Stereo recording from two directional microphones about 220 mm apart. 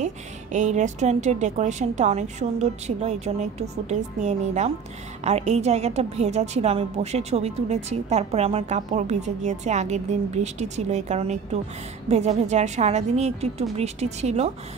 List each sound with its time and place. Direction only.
0.0 s a woman's voice: 35° right (ahead or behind)